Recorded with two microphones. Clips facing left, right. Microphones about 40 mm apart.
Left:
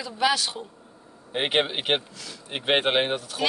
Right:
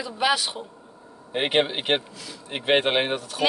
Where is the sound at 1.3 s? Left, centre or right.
Centre.